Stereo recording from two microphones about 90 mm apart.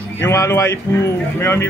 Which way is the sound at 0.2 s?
30° left (ahead or behind).